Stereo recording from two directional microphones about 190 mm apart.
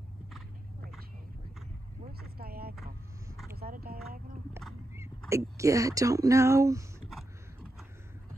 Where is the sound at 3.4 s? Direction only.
55° right (ahead or behind).